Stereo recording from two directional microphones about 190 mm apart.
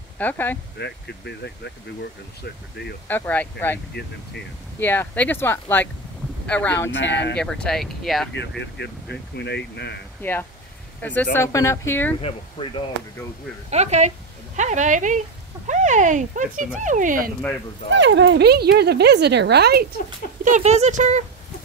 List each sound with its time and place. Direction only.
0.2 s speech: 10° left (ahead or behind)
0.7 s speech: 60° left (ahead or behind)
3.1 s speech: 10° left (ahead or behind)
6.9 s speech: 70° left (ahead or behind)
7.3 s speech: 5° left (ahead or behind)
8.3 s speech: 65° left (ahead or behind)
10.2 s speech: 10° left (ahead or behind)
12.2 s speech: 30° left (ahead or behind)
13.7 s speech: 35° right (ahead or behind)
17.8 s speech: 70° right (ahead or behind)
20.4 s speech: 40° right (ahead or behind)